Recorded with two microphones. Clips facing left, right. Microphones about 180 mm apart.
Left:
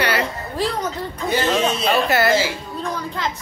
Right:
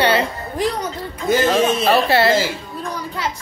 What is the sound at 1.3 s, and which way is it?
Speech, 40° right (ahead or behind).